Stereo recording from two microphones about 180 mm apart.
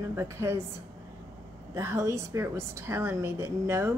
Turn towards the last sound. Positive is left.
turn(degrees=-15)  # may be behind; listen again after turning